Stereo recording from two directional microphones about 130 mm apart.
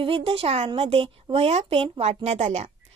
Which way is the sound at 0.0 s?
45° right (ahead or behind).